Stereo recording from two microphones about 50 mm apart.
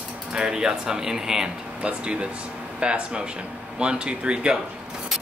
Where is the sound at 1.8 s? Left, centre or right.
Right.